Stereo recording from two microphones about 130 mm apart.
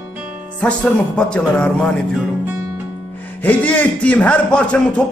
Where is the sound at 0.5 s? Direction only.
10° left (ahead or behind).